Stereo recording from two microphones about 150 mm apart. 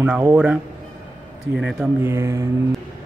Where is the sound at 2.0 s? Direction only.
20° right (ahead or behind).